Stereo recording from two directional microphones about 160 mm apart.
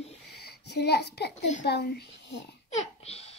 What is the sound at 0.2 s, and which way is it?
A child's voice, 90° left.